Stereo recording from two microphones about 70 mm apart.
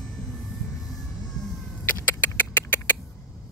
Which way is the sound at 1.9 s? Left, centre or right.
Left.